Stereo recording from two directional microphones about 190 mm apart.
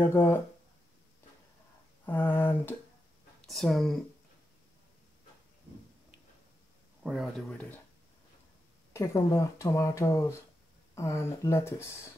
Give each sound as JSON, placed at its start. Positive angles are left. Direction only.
{"t": 0.0, "sound": "speech", "side_deg": 15}
{"t": 2.0, "sound": "speech", "side_deg": 10}
{"t": 7.0, "sound": "speech", "side_deg": 0}
{"t": 8.9, "sound": "speech", "side_deg": 15}